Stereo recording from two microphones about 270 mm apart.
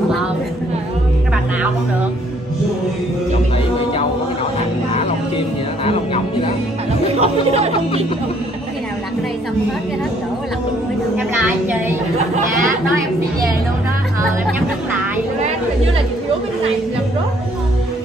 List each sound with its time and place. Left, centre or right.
5.9 s music: left
7.2 s speech: right